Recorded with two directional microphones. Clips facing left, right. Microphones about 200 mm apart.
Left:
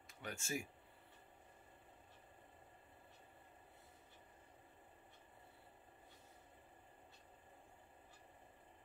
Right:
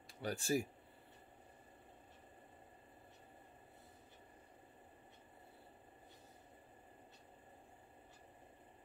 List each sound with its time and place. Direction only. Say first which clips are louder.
0.2 s speech: right 8 dB; 35° right (ahead or behind)